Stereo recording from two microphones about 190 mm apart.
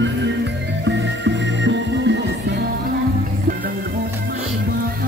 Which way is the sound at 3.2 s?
50° right (ahead or behind).